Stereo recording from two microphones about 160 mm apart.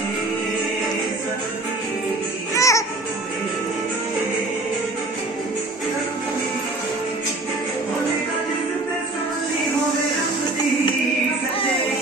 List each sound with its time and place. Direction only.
2.5 s music: 20° left (ahead or behind)